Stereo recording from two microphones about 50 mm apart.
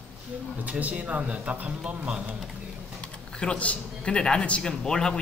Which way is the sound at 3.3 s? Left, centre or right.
Left.